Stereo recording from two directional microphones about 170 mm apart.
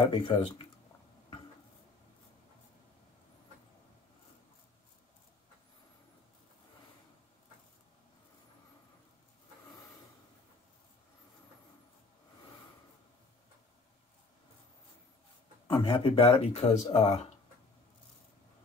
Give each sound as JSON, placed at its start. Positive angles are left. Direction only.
{"t": 0.1, "sound": "speech", "side_deg": 30}
{"t": 15.6, "sound": "speech", "side_deg": 30}